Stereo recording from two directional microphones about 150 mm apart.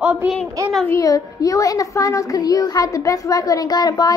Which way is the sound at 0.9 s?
25° left (ahead or behind).